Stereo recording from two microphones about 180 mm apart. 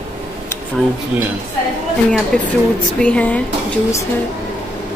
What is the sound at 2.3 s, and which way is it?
A woman's voice, 5° left (ahead or behind).